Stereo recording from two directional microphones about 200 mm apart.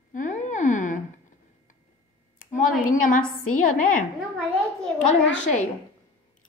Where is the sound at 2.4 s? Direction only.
40° left (ahead or behind).